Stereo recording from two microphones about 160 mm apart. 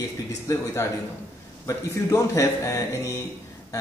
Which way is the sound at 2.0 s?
20° left (ahead or behind).